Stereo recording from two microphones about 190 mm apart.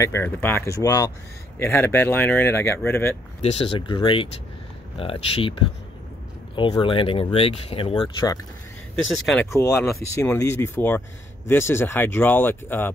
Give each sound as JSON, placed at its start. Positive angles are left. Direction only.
{"t": 0.0, "sound": "speech", "side_deg": 15}
{"t": 3.4, "sound": "speech", "side_deg": 30}
{"t": 6.5, "sound": "speech", "side_deg": 25}
{"t": 9.1, "sound": "speech", "side_deg": 5}
{"t": 9.5, "sound": "speech", "side_deg": 15}